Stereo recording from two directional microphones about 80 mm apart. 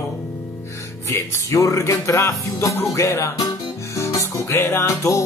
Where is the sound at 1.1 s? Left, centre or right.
Left.